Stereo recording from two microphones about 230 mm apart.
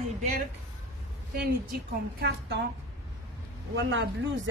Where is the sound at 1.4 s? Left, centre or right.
Right.